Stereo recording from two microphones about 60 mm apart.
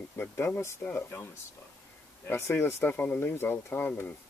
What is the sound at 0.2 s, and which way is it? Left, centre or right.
Speech, left.